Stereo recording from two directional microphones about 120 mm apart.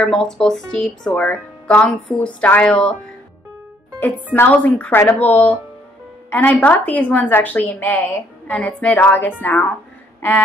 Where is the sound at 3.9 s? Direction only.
15° left (ahead or behind).